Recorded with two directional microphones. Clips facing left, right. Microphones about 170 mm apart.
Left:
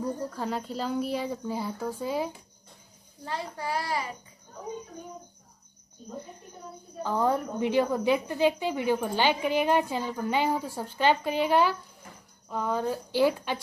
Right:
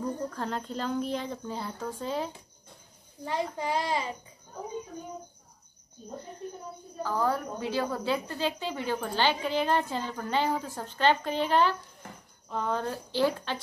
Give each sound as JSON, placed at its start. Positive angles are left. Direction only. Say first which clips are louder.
{"t": 0.3, "sound": "a woman's voice", "louder": "left 2 dB", "side_deg": 10}
{"t": 3.3, "sound": "a child's voice", "louder": "right 3 dB", "side_deg": -20}
{"t": 7.0, "sound": "a woman's voice", "louder": "left 2 dB", "side_deg": 20}